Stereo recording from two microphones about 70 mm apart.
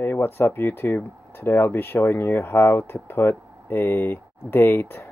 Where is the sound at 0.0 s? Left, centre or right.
Left.